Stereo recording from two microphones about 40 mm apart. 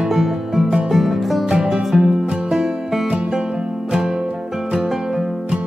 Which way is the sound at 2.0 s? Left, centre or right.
Centre.